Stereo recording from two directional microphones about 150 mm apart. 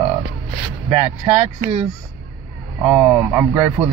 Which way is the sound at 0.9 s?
5° right (ahead or behind).